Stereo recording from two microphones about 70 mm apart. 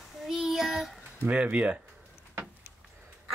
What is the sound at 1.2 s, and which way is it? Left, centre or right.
Speech, centre.